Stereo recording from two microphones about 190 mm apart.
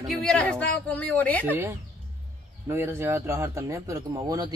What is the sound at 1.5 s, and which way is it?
Speech, 10° right (ahead or behind).